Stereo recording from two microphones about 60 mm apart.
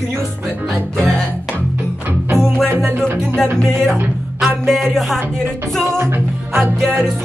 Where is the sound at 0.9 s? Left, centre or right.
Centre.